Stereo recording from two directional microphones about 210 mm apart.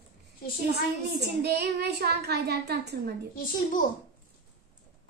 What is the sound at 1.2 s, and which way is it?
A child's voice, 50° right (ahead or behind).